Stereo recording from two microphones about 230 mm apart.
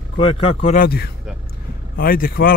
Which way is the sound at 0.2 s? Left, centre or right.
Left.